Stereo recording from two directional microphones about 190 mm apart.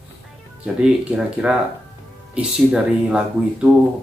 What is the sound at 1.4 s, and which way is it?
Speech, 5° right (ahead or behind).